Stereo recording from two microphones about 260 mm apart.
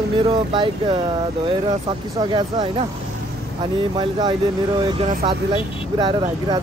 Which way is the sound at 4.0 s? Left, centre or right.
Centre.